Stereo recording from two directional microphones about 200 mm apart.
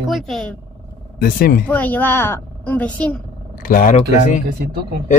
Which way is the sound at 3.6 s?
45° left (ahead or behind).